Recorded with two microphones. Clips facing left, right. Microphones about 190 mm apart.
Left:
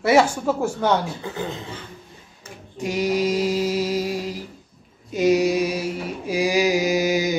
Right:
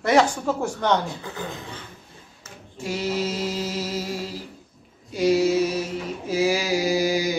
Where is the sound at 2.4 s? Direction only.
15° left (ahead or behind).